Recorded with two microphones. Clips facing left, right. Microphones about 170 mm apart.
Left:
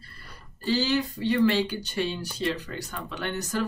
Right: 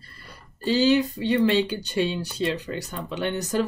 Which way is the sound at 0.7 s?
20° right (ahead or behind).